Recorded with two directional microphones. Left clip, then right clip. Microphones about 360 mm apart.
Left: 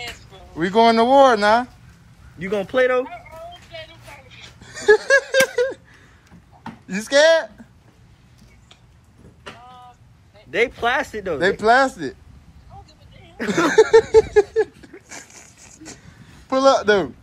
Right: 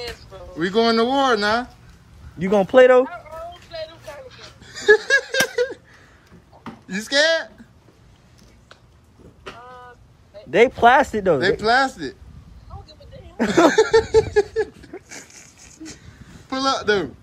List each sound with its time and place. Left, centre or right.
0.6 s speech: centre
2.3 s speech: right
4.3 s a sound: centre
6.9 s speech: centre
10.5 s speech: right
11.3 s speech: centre
13.7 s a sound: centre
16.4 s speech: centre